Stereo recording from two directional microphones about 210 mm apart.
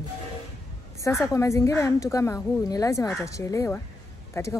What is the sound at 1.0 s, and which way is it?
A woman's voice, 15° left (ahead or behind).